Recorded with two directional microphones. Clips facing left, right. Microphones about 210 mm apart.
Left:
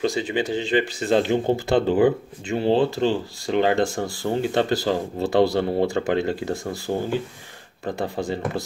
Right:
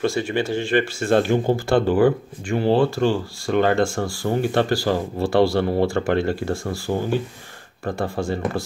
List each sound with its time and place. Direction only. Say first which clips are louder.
0.0 s speech: right 1 dB; 15° left (ahead or behind)